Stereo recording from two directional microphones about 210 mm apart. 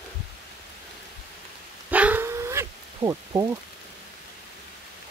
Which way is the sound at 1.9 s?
10° right (ahead or behind).